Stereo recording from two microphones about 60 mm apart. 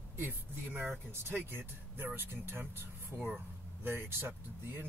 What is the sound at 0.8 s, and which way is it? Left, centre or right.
Speech, right.